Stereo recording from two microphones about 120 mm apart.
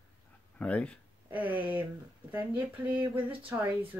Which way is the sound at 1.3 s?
15° right (ahead or behind).